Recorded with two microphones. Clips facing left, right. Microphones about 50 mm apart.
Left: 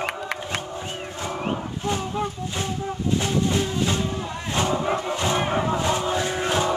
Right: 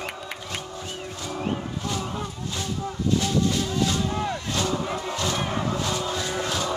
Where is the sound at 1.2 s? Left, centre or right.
Left.